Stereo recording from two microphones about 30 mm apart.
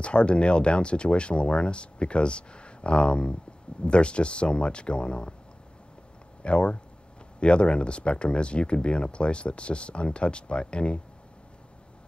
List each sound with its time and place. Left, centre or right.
0.0 s speech: left
6.4 s speech: left